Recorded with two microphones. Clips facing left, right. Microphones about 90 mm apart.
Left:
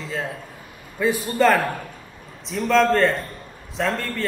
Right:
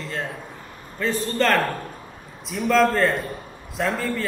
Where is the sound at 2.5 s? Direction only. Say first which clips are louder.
Left 1 dB; centre (ahead or behind).